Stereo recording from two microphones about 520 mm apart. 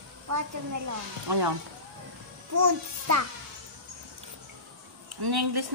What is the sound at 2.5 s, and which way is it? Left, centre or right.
Speech, right.